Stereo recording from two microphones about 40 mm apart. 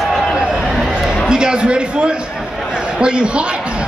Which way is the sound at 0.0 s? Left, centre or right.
Centre.